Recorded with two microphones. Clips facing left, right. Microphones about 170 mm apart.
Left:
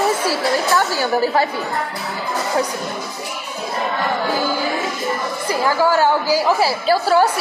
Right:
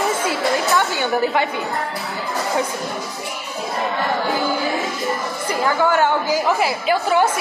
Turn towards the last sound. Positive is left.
turn(degrees=35)  # may be behind; listen again after turning